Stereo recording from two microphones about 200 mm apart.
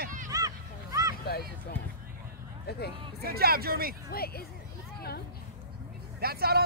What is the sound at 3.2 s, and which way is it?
Speech, 50° right (ahead or behind).